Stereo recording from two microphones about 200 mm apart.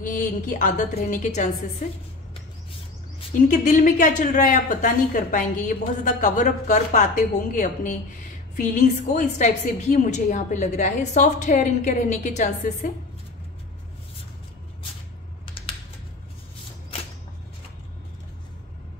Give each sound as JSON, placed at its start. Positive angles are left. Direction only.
{"t": 0.0, "sound": "a woman's voice", "side_deg": 40}
{"t": 3.4, "sound": "a woman's voice", "side_deg": 40}
{"t": 15.6, "sound": "typing", "side_deg": 25}